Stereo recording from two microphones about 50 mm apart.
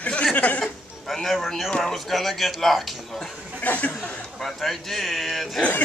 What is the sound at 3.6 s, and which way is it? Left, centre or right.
Speech, left.